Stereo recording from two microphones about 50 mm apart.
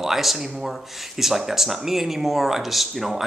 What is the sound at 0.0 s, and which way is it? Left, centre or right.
Speech, centre.